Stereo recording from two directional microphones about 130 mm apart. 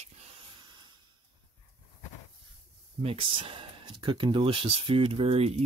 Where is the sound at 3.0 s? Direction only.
45° right (ahead or behind).